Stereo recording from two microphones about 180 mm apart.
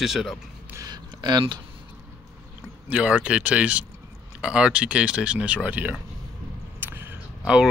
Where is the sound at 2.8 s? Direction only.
5° right (ahead or behind).